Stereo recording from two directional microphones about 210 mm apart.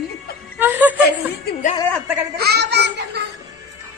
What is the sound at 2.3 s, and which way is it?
Baby laughter, 50° right (ahead or behind).